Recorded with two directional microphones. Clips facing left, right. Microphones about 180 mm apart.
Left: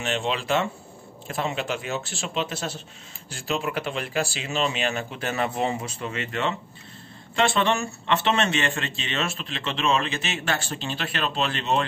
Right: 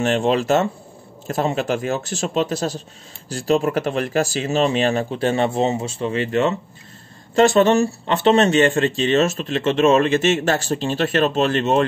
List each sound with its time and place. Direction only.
0.0 s speech: 45° right (ahead or behind)